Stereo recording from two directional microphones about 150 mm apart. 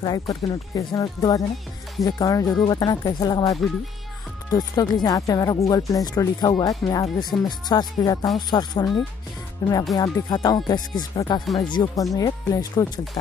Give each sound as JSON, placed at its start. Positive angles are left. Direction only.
{"t": 0.0, "sound": "speech", "side_deg": 25}